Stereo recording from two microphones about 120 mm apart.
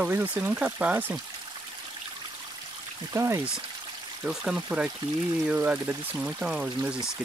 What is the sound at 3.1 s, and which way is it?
Speech, 20° right (ahead or behind).